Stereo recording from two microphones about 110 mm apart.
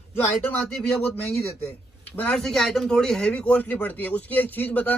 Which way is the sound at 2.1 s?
10° left (ahead or behind).